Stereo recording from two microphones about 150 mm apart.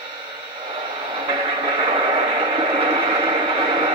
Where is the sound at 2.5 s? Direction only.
35° right (ahead or behind).